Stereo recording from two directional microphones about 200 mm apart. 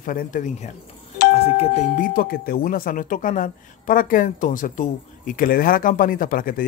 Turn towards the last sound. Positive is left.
turn(degrees=45)  # may be behind; listen again after turning